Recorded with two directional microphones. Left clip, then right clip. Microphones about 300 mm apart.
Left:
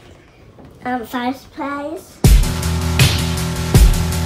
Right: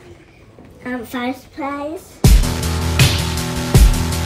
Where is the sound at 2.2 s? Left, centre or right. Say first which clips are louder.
Right 1 dB; centre.